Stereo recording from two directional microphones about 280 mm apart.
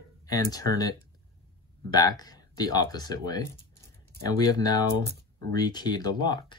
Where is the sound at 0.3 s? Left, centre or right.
Centre.